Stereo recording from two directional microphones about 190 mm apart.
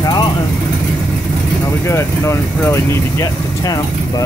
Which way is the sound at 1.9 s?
15° left (ahead or behind).